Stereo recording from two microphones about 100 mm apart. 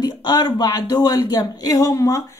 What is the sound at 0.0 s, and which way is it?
A woman's voice, 45° left (ahead or behind).